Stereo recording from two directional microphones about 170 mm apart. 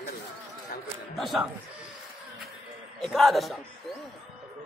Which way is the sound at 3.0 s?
Centre (ahead or behind).